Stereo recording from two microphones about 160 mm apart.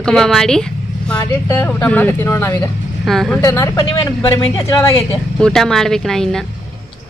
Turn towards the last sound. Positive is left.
turn(degrees=5)  # may be behind; listen again after turning